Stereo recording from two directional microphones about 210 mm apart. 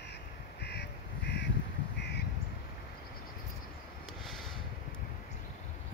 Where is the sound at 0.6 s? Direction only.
50° left (ahead or behind).